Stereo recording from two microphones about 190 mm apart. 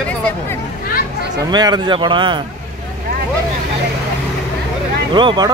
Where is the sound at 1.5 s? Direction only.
20° right (ahead or behind).